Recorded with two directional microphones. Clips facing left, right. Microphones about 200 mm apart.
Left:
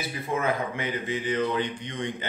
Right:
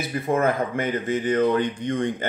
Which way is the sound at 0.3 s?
50° right (ahead or behind).